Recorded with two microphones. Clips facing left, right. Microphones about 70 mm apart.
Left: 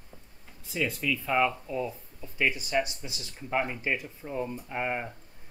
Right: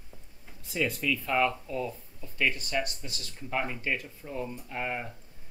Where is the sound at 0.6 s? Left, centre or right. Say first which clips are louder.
Even; centre.